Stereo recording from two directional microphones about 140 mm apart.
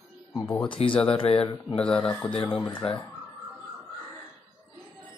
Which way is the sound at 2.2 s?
35° left (ahead or behind).